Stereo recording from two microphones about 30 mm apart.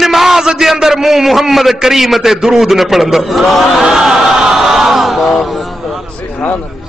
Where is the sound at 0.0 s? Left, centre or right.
Centre.